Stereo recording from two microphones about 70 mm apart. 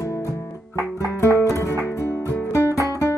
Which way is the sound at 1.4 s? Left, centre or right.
Left.